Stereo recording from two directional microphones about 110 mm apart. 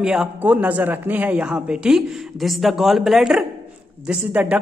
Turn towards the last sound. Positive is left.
turn(degrees=-10)  # may be behind; listen again after turning